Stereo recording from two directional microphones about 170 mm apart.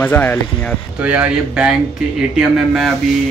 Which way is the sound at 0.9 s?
10° right (ahead or behind).